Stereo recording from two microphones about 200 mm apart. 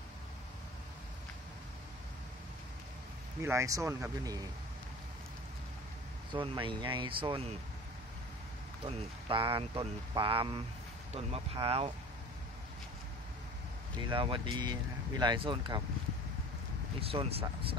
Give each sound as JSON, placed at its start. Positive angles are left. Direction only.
{"t": 3.4, "sound": "speech", "side_deg": -15}
{"t": 6.3, "sound": "speech", "side_deg": -25}
{"t": 8.8, "sound": "speech", "side_deg": -25}
{"t": 14.0, "sound": "speech", "side_deg": -25}
{"t": 17.0, "sound": "speech", "side_deg": -30}